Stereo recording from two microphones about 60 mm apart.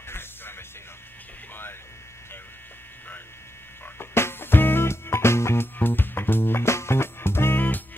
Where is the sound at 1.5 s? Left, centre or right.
Left.